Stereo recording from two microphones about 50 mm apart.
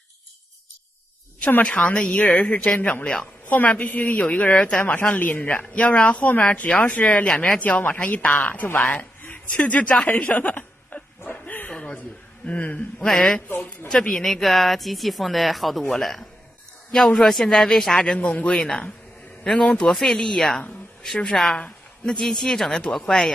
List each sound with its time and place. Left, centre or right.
1.6 s a woman's voice: left
10.0 s chuckle: left
11.7 s a sound: centre
12.4 s speech: left
13.0 s speech: centre
18.1 s speech: left
19.9 s speech: centre